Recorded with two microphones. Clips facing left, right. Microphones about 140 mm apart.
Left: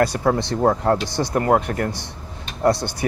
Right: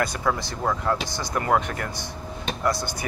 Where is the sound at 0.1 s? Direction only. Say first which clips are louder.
Left 6 dB; 35° left (ahead or behind).